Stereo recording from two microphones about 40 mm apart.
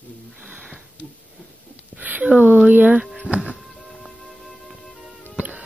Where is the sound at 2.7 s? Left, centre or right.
Right.